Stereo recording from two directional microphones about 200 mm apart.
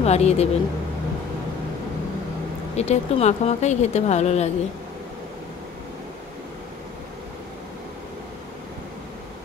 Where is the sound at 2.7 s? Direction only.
35° left (ahead or behind).